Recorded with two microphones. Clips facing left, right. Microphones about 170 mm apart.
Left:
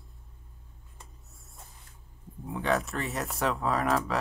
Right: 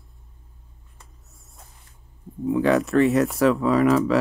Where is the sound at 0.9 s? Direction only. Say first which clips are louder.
Even; centre (ahead or behind).